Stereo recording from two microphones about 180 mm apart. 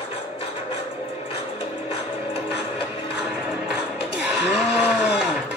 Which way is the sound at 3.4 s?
5° right (ahead or behind).